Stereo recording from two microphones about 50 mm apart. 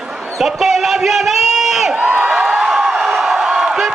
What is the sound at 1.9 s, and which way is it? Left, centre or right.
Crowd, right.